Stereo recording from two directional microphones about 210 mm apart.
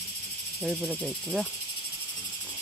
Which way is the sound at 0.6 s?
10° right (ahead or behind).